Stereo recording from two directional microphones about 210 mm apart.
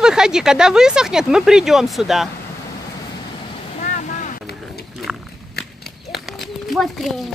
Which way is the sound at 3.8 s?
35° left (ahead or behind).